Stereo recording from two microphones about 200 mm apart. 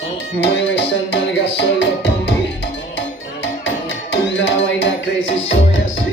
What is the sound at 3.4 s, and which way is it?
Music, 65° left (ahead or behind).